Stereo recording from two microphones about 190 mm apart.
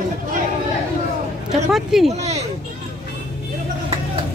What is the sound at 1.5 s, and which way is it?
Speech, centre (ahead or behind).